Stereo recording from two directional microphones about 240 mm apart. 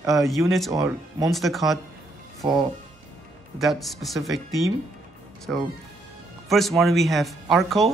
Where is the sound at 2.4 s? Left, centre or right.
Centre.